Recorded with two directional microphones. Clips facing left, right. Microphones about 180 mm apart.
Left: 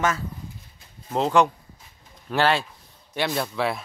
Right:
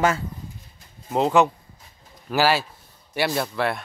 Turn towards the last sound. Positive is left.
turn(degrees=0)  # may be behind; listen again after turning